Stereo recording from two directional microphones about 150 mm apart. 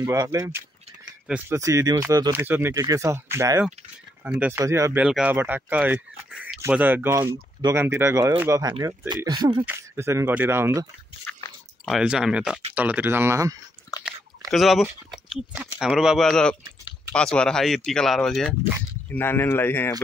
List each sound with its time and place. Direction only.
0.0 s speech: 20° right (ahead or behind)
5.0 s speech: 5° right (ahead or behind); by 9.7 s 30° right (ahead or behind)
9.7 s speech: 15° right (ahead or behind)
11.4 s chewing: 15° left (ahead or behind)
11.9 s speech: 5° right (ahead or behind)
13.9 s chewing: 25° left (ahead or behind)
14.5 s speech: centre (ahead or behind)
19.1 s speech: 15° left (ahead or behind)